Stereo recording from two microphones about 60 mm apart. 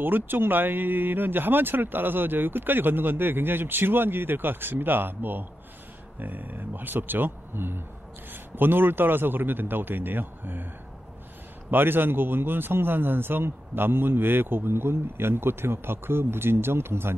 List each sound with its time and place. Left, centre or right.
0.0 s speech: right
11.7 s speech: right